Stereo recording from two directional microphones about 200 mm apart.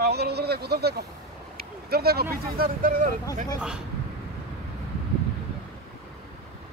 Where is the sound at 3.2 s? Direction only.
15° left (ahead or behind).